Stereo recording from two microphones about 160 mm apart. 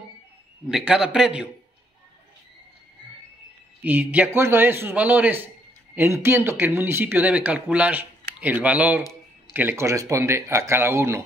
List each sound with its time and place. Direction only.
0.7 s a man's voice: 5° right (ahead or behind)
3.8 s speech: 10° right (ahead or behind)